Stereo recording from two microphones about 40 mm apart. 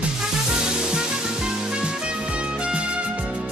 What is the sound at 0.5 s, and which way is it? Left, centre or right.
Music, centre.